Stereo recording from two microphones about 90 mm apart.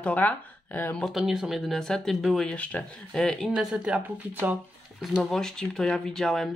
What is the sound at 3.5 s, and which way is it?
Speech, 5° right (ahead or behind).